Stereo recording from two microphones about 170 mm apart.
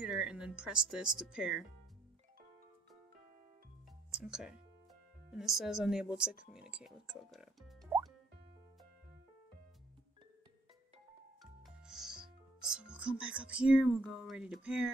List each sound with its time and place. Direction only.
0.0 s speech: 5° right (ahead or behind)
4.1 s speech: 5° right (ahead or behind)
7.9 s music: 15° right (ahead or behind)
11.9 s speech: 5° right (ahead or behind)